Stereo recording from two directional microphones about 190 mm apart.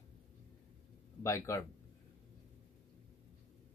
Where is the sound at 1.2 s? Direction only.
15° left (ahead or behind).